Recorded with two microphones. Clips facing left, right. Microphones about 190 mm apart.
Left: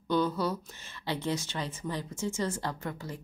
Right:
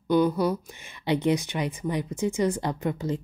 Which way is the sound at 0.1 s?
15° right (ahead or behind).